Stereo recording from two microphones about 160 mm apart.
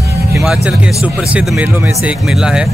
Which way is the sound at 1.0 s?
5° right (ahead or behind).